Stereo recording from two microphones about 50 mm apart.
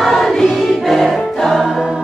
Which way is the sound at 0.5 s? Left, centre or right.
Centre.